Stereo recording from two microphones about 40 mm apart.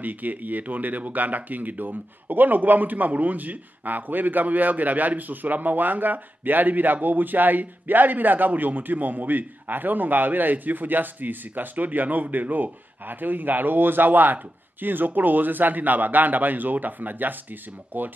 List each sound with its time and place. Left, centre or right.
0.0 s speech: right